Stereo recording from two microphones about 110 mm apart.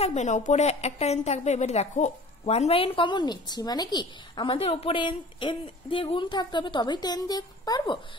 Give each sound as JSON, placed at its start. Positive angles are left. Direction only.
{"t": 0.0, "sound": "a woman's voice", "side_deg": 90}
{"t": 4.6, "sound": "speech", "side_deg": 65}